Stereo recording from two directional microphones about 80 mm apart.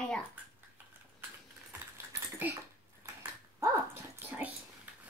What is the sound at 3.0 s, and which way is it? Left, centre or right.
Dog, right.